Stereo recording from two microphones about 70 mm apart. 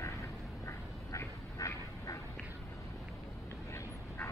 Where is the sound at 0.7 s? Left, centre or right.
Left.